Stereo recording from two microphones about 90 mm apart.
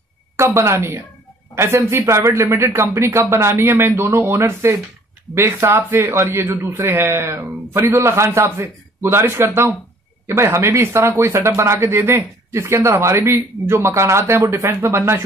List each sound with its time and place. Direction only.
0.4 s a man's voice: 30° right (ahead or behind)